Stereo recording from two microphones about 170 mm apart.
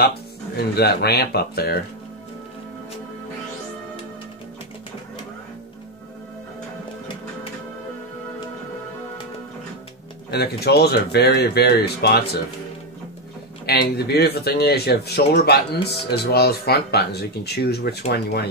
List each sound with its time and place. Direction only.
0.7 s speech: 70° left (ahead or behind)
10.3 s speech: 70° left (ahead or behind)
13.7 s speech: 70° left (ahead or behind)